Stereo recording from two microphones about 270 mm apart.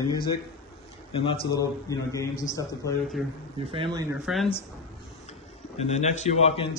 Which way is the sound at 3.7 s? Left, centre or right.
Centre.